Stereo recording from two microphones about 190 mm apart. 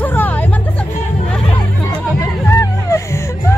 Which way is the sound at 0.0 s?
10° left (ahead or behind).